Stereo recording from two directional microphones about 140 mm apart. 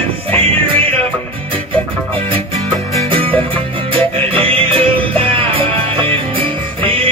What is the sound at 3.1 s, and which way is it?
Music, 40° right (ahead or behind).